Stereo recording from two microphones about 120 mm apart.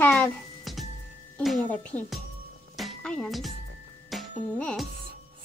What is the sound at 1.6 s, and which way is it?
Speech, 15° left (ahead or behind).